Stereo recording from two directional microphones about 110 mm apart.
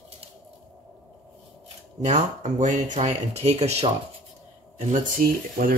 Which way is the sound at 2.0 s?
90° right.